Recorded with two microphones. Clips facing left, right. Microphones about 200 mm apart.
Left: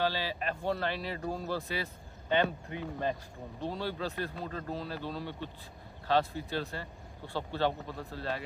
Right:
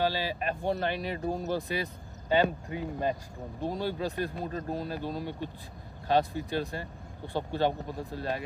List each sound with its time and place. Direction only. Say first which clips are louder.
0.0 s speech: right 3 dB; 15° right (ahead or behind)
3.6 s speech: right 4 dB; 15° right (ahead or behind)